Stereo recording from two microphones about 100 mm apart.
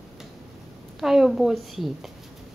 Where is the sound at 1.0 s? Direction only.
Centre (ahead or behind).